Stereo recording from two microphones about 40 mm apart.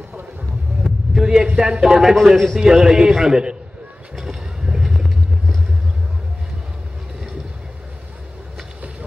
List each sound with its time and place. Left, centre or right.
0.8 s a sound: centre
1.6 s a man's voice: centre
2.6 s a man's voice: centre
4.2 s vehicle: centre